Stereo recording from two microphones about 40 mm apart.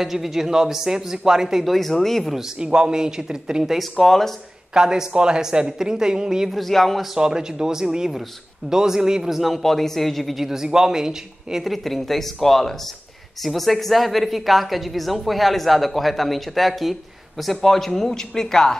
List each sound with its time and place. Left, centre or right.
0.0 s speech: centre
1.7 s speech: centre
2.6 s speech: right
3.9 s a man's voice: centre
4.7 s speech: centre
6.5 s speech: centre
7.2 s speech: centre
9.4 s speech: centre
10.4 s speech: centre
11.6 s a man's voice: centre